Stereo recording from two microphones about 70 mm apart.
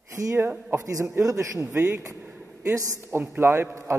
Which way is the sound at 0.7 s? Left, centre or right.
Right.